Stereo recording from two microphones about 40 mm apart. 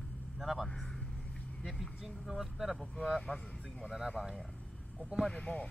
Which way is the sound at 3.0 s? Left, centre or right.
Centre.